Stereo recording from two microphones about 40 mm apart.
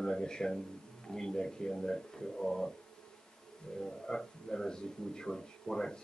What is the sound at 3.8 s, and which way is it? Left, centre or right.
A man's voice, centre.